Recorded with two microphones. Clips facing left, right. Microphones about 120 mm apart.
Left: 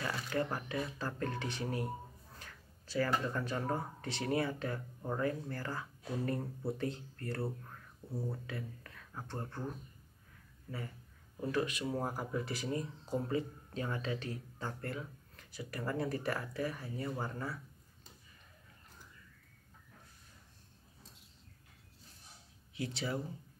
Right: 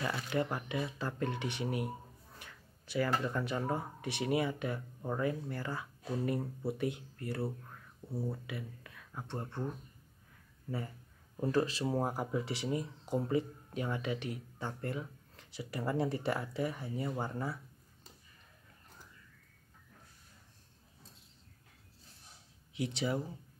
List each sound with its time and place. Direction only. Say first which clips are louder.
0.0 s speech: right 2 dB; 20° right (ahead or behind)
2.3 s a sound: even; 20° right (ahead or behind)
3.3 s speech: right 1 dB; 15° right (ahead or behind)
8.1 s speech: right 2 dB; centre (ahead or behind)
8.5 s speech: even; 15° right (ahead or behind)
11.5 s speech: right 3 dB; 30° right (ahead or behind)
12.0 s speech: right 3 dB; 20° right (ahead or behind)
22.8 s speech: right 3 dB; 20° right (ahead or behind)